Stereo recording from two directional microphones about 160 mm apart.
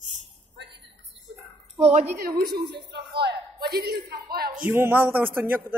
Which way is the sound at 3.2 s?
80° right.